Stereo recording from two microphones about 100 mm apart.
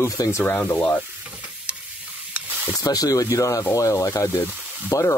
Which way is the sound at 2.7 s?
40° left (ahead or behind).